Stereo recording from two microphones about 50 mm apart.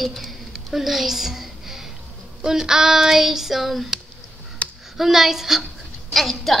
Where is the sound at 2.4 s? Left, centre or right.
Centre.